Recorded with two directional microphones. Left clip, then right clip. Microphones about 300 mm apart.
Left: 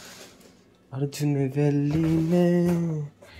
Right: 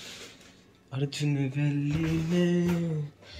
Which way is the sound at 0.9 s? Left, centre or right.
Centre.